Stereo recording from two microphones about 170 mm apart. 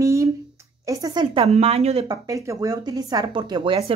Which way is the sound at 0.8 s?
25° right (ahead or behind).